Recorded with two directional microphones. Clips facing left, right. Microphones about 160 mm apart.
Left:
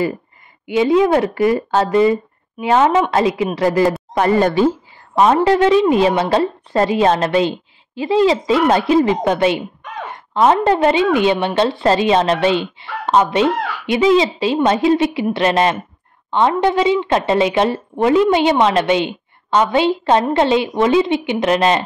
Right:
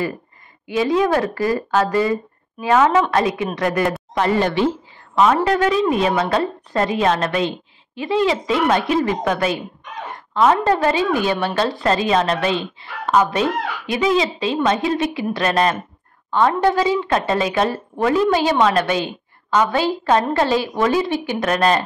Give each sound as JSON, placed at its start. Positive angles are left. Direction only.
{"t": 0.7, "sound": "a woman's voice", "side_deg": 25}
{"t": 4.1, "sound": "speech", "side_deg": 45}
{"t": 5.1, "sound": "a woman's voice", "side_deg": 25}